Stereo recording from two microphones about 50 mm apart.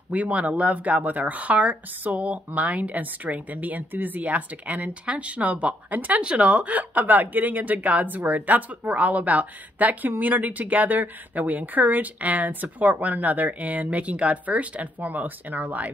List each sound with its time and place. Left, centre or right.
0.1 s a woman's voice: right